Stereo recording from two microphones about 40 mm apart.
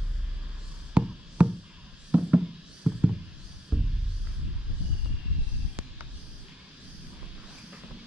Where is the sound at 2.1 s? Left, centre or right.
Right.